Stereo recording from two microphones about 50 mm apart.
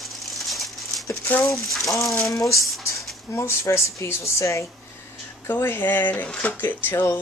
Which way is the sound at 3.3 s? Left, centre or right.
Left.